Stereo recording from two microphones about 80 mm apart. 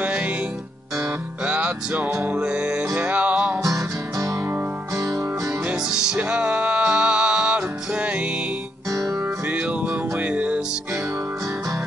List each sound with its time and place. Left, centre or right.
0.0 s music: centre
1.4 s music: centre
3.6 s music: right
6.1 s music: centre
8.9 s music: right
9.5 s music: centre